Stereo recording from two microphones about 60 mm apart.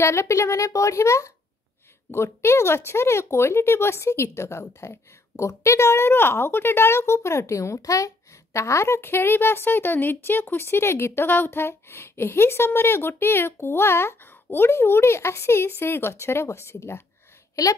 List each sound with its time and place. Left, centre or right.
0.0 s a woman's voice: left